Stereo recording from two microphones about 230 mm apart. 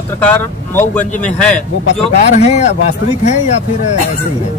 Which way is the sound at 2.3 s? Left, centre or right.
Left.